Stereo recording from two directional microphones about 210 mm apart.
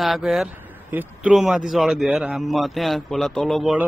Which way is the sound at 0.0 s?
Centre (ahead or behind).